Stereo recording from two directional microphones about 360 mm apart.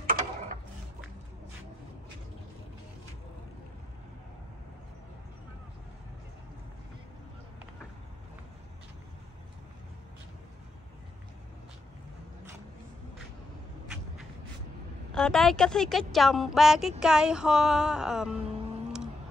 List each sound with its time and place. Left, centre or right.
0.0 s gears: right
15.1 s a woman's voice: centre